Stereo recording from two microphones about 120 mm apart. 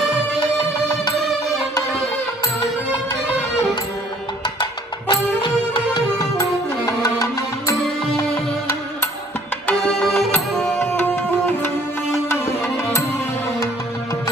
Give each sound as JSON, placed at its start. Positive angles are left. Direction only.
{"t": 2.4, "sound": "music", "side_deg": 35}
{"t": 4.6, "sound": "music", "side_deg": 40}
{"t": 6.9, "sound": "music", "side_deg": 30}
{"t": 9.7, "sound": "music", "side_deg": 5}